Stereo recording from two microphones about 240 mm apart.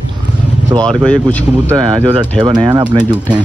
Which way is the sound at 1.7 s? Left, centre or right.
Centre.